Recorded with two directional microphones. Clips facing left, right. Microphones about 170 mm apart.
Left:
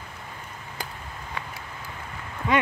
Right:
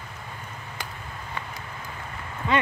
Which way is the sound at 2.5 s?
10° left (ahead or behind).